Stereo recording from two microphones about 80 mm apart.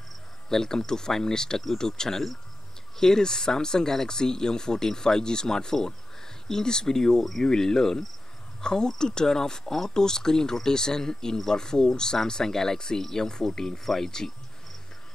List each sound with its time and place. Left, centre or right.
0.5 s speech: centre